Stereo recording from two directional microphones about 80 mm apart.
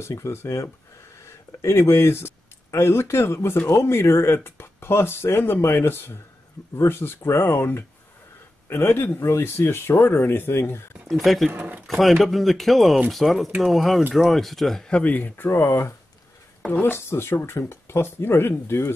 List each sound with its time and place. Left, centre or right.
0.0 s speech: left
11.1 s speech: centre
11.5 s speech: right
11.9 s speech: centre; by 18.9 s left